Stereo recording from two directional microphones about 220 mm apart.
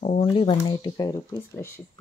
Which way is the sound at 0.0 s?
30° left (ahead or behind).